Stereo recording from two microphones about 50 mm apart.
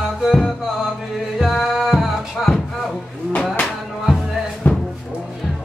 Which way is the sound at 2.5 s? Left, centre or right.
Centre.